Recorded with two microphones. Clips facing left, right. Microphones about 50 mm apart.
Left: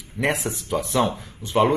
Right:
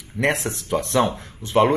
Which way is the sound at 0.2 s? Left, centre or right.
Centre.